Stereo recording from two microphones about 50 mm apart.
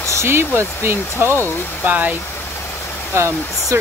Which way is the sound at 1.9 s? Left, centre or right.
Right.